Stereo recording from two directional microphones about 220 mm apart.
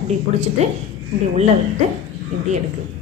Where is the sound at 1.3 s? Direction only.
30° right (ahead or behind).